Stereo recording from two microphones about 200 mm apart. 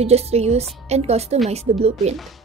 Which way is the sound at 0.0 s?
30° right (ahead or behind).